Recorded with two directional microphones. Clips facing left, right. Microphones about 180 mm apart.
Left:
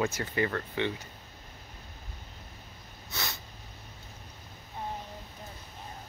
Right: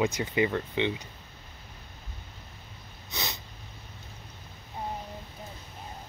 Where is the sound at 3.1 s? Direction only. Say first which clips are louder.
Right 2 dB; 20° right (ahead or behind).